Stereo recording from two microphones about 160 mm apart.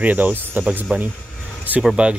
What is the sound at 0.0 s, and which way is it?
Speech, 10° right (ahead or behind).